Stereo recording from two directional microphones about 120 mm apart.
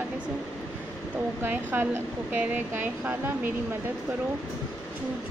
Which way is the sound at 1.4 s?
20° right (ahead or behind).